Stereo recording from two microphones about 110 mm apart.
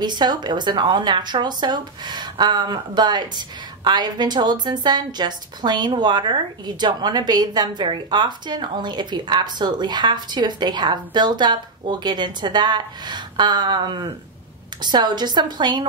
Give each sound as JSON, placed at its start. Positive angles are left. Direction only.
{"t": 0.0, "sound": "a woman's voice", "side_deg": -40}